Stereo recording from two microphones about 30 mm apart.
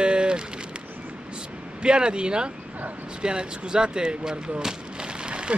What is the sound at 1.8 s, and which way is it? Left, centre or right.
Speech, right.